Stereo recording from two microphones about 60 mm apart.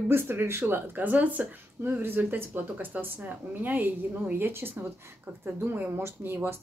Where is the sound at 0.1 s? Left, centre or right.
Right.